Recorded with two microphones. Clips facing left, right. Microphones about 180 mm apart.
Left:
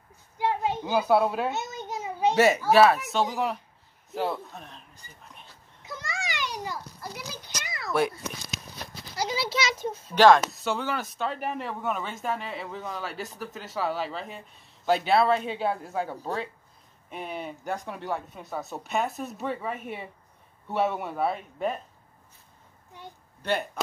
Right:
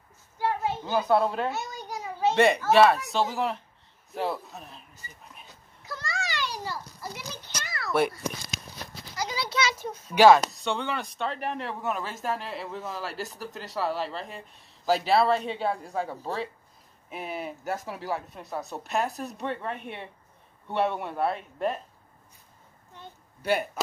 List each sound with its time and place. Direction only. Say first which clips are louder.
0.4 s children playing: left 1 dB; 15° left (ahead or behind)
1.5 s a sound: left 1 dB; 20° left (ahead or behind)
2.3 s speech: even; 5° left (ahead or behind)
5.9 s a sound: right 1 dB; 20° left (ahead or behind)
9.1 s a child's voice: left 2 dB; 25° left (ahead or behind)
10.1 s speech: right 1 dB; 10° right (ahead or behind)
10.4 s speech: left 1 dB; 5° left (ahead or behind)
23.0 s a sound: left 1 dB; 10° left (ahead or behind)
23.4 s speech: right 2 dB; 10° right (ahead or behind)